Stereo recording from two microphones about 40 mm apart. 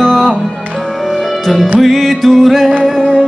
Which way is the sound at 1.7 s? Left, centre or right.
Centre.